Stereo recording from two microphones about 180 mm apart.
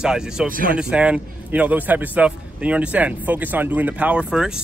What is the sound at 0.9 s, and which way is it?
A man's voice, 5° right (ahead or behind).